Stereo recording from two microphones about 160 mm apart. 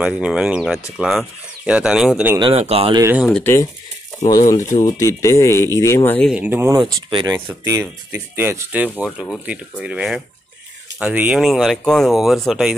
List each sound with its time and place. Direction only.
0.0 s speech: 5° right (ahead or behind)
2.3 s speech: 35° right (ahead or behind)
3.3 s speech: 10° left (ahead or behind)
4.8 s speech: 20° left (ahead or behind)
6.3 s speech: 10° right (ahead or behind)
6.8 s speech: 30° right (ahead or behind)
7.6 s speech: 15° right (ahead or behind); by 12.7 s centre (ahead or behind)